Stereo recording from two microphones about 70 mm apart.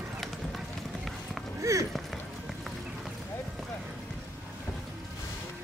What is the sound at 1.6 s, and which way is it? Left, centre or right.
Run, right.